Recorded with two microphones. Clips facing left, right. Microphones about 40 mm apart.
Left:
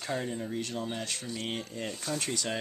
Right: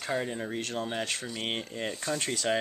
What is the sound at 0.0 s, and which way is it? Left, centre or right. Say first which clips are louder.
Speech: right 2 dB; centre.